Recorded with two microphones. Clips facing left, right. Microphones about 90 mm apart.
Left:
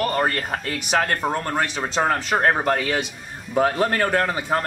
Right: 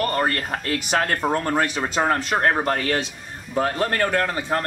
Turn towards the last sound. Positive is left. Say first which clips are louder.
# left 1 dB
turn(degrees=10)  # may be behind; listen again after turning